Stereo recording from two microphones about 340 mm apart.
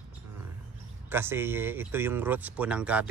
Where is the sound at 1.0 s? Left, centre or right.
Centre.